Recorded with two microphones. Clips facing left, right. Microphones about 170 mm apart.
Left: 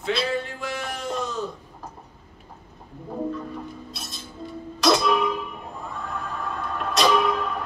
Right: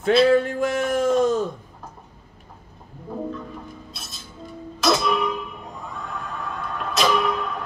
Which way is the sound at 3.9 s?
Centre (ahead or behind).